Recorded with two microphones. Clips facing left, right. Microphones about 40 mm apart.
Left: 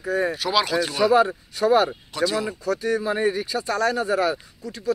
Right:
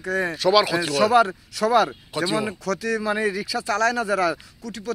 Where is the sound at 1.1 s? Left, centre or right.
Right.